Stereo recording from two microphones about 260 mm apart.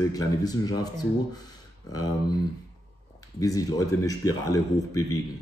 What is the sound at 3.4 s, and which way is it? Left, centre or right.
Speech, centre.